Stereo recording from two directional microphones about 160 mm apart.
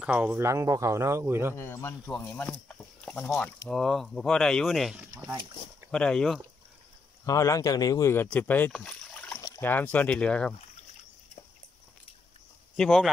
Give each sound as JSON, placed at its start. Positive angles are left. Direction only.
{"t": 0.0, "sound": "speech", "side_deg": -10}
{"t": 1.6, "sound": "speech", "side_deg": 15}
{"t": 3.6, "sound": "speech", "side_deg": 0}
{"t": 7.2, "sound": "speech", "side_deg": 20}
{"t": 12.7, "sound": "speech", "side_deg": 5}